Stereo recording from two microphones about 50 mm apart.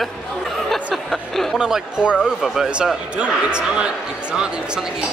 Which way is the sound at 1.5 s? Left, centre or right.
Centre.